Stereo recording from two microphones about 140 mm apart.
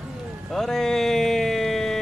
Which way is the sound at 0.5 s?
5° left (ahead or behind).